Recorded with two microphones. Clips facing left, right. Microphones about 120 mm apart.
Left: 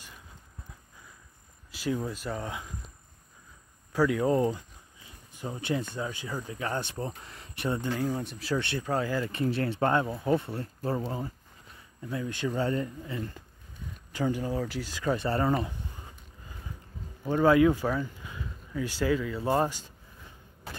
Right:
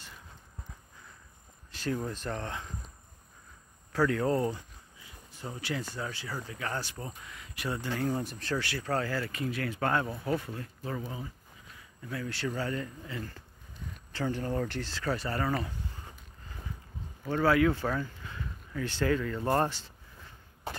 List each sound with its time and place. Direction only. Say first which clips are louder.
1.7 s speech: left 2 dB; 10° left (ahead or behind)
3.9 s speech: left 3 dB; 10° left (ahead or behind)
8.1 s speech: left 1 dB; centre (ahead or behind)
8.5 s speech: left 2 dB; 20° left (ahead or behind)
9.4 s speech: left 7 dB; 30° left (ahead or behind)
12.1 s speech: left 3 dB; 20° left (ahead or behind)
14.1 s speech: left 2 dB; 10° left (ahead or behind)
15.2 s speech: left 5 dB; 25° left (ahead or behind)
17.2 s speech: left 4 dB; 15° left (ahead or behind)